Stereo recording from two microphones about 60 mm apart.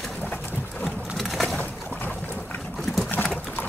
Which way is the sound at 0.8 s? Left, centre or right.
Centre.